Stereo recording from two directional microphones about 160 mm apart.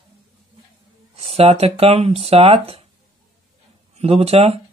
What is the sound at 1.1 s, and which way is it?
Speech, 40° right (ahead or behind).